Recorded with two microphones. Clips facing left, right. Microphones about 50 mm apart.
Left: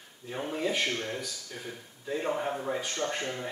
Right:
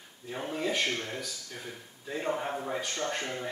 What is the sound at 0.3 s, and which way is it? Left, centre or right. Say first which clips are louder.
Speech: left 1 dB; centre.